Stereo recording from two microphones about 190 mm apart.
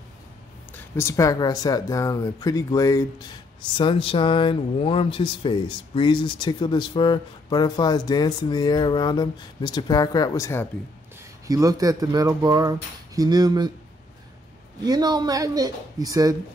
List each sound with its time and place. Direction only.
0.9 s speech: 15° left (ahead or behind)
11.4 s speech: 20° right (ahead or behind)
14.8 s speech: 20° right (ahead or behind)